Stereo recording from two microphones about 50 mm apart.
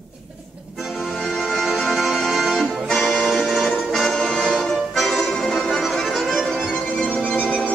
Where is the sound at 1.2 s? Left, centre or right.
Centre.